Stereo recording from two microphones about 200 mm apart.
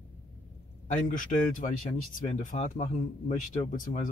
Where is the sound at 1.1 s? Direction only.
40° left (ahead or behind).